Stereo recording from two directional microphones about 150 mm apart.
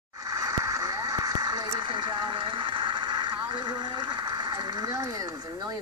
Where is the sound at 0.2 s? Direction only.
25° right (ahead or behind).